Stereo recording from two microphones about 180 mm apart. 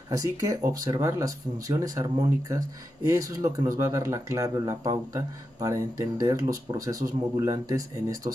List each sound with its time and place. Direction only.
0.1 s speech: 20° right (ahead or behind)